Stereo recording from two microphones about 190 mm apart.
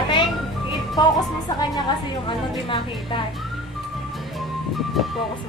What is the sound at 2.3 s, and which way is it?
Speech, 25° left (ahead or behind).